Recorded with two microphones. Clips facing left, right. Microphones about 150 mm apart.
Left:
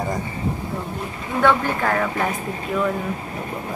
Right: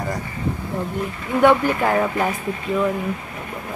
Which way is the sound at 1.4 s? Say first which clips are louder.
Right 3 dB; 15° right (ahead or behind).